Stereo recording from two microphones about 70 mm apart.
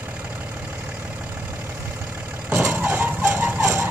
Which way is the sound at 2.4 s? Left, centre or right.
Right.